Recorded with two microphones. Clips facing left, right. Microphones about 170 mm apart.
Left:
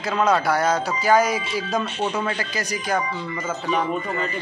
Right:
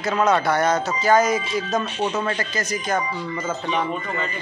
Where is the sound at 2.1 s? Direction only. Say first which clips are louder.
Right 1 dB; 10° left (ahead or behind).